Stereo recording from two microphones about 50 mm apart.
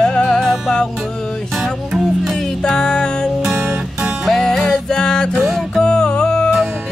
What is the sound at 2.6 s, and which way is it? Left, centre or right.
Music, centre.